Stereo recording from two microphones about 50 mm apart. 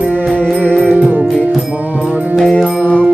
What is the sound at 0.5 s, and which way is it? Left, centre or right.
Music, left.